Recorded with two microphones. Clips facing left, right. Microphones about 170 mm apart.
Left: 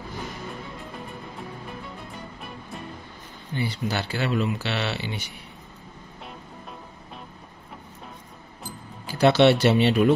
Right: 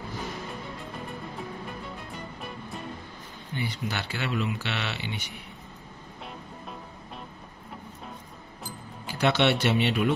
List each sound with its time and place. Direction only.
3.5 s speech: 35° left (ahead or behind)
9.0 s speech: 35° left (ahead or behind)